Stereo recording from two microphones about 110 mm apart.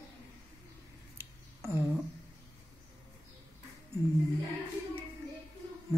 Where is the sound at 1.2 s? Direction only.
25° right (ahead or behind).